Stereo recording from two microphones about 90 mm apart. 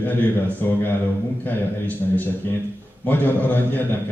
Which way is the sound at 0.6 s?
20° left (ahead or behind).